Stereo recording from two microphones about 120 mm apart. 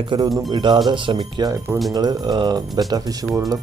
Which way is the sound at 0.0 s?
40° right (ahead or behind).